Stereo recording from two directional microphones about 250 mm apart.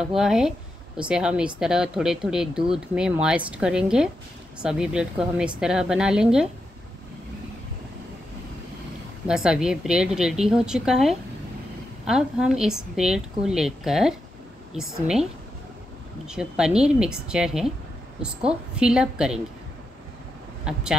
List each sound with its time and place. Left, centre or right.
0.0 s speech: centre
9.3 s speech: centre
16.3 s speech: centre
20.7 s speech: centre